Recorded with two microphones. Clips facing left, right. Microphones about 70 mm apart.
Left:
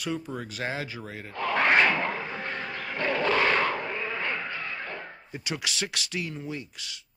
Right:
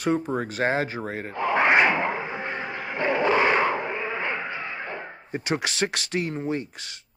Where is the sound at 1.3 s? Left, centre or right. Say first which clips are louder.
Right 3 dB; centre.